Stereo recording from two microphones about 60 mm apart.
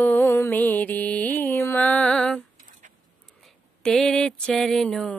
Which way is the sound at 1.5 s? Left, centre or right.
Left.